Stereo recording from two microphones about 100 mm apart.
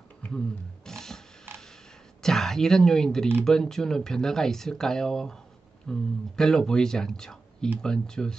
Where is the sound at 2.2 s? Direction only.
5° left (ahead or behind).